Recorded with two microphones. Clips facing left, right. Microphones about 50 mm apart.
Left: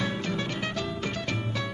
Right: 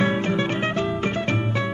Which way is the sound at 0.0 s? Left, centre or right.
Right.